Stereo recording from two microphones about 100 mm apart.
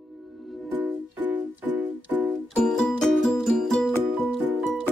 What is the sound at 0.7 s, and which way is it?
Music, 20° right (ahead or behind).